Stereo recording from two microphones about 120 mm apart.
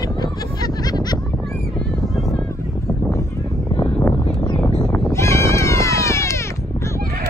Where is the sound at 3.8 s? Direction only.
15° left (ahead or behind).